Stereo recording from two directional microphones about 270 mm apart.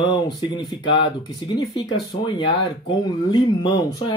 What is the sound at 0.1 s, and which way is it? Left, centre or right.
Speech, centre.